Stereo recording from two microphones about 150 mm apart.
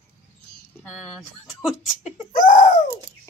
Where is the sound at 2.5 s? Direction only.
50° left (ahead or behind).